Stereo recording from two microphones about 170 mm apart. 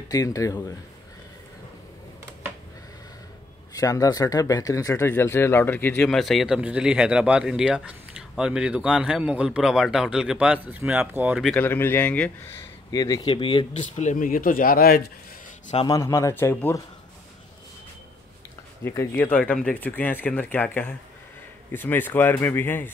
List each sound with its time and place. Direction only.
0.1 s speech: 20° left (ahead or behind)
3.7 s speech: 20° left (ahead or behind)
6.0 s speech: centre (ahead or behind)
11.4 s speech: 10° left (ahead or behind)
12.9 s speech: 20° left (ahead or behind)
13.9 s speech: 50° left (ahead or behind)
15.9 s speech: 20° left (ahead or behind)
18.9 s speech: 10° left (ahead or behind)